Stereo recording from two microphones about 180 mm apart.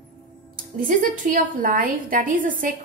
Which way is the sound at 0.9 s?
50° right (ahead or behind).